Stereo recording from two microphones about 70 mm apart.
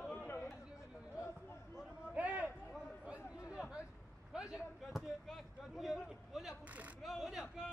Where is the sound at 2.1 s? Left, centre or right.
Centre.